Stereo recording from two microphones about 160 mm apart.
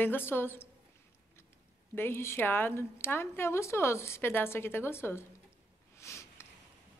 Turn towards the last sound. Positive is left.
turn(degrees=15)  # may be behind; listen again after turning